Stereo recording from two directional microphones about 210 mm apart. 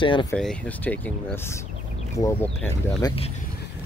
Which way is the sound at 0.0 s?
25° left (ahead or behind).